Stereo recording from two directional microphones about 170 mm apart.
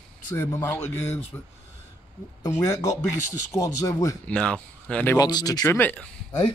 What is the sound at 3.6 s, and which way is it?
Speech, 20° left (ahead or behind).